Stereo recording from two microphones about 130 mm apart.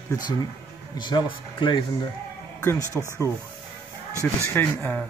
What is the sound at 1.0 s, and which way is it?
Speech, 40° left (ahead or behind).